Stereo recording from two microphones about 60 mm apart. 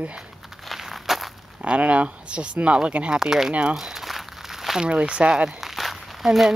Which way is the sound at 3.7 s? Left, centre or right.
Centre.